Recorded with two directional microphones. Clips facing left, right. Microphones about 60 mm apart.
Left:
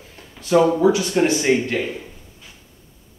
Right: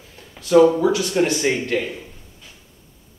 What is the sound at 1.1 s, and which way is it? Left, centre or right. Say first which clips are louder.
Speech: left 2 dB; centre.